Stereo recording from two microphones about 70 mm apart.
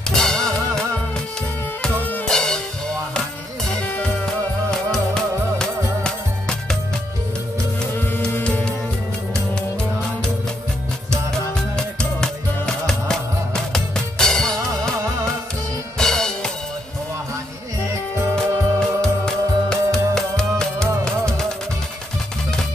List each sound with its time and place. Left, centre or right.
0.1 s music: centre
2.2 s music: centre
3.8 s music: left
4.6 s music: centre
9.3 s music: centre
11.1 s music: centre
16.0 s music: centre
18.3 s music: centre